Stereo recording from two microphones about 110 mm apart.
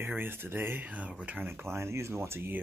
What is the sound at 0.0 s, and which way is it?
Speech, 20° right (ahead or behind).